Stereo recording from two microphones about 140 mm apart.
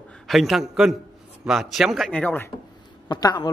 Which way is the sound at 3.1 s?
25° left (ahead or behind).